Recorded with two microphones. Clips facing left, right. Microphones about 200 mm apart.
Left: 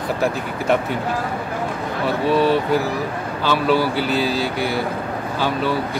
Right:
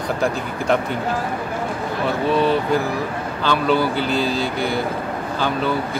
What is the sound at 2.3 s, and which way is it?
Speech, 5° left (ahead or behind).